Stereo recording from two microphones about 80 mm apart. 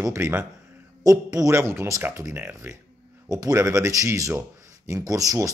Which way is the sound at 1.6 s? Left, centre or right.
Right.